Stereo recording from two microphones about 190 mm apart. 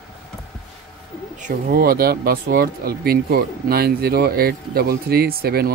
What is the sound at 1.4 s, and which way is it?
Speech, 50° right (ahead or behind).